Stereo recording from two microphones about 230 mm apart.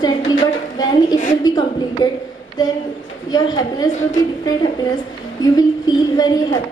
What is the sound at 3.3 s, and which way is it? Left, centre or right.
A woman's voice, centre.